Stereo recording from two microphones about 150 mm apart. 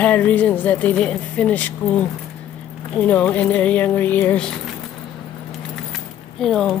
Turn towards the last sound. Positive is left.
turn(degrees=5)  # may be behind; listen again after turning